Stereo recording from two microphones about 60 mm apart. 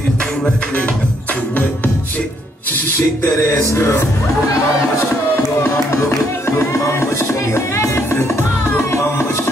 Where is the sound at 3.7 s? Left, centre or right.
Left.